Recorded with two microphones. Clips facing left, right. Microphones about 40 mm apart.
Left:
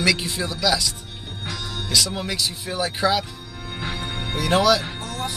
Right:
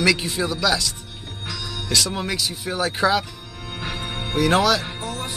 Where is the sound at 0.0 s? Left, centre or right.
Centre.